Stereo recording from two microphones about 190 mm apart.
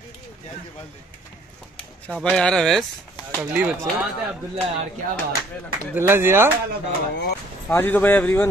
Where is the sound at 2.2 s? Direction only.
5° left (ahead or behind).